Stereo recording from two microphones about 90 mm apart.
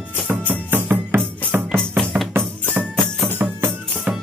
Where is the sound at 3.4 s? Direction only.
20° right (ahead or behind).